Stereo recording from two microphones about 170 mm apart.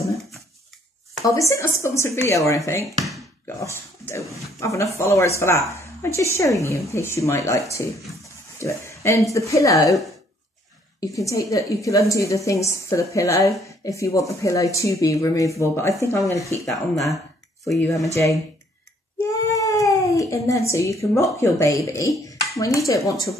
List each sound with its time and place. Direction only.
0.0 s a sound: 20° left (ahead or behind)
1.2 s speech: 20° left (ahead or behind)
8.6 s a woman's voice: 15° left (ahead or behind)
11.0 s a woman's voice: 20° left (ahead or behind)
16.9 s speech: centre (ahead or behind)
18.0 s speech: 20° left (ahead or behind)
19.4 s a woman's voice: 20° left (ahead or behind)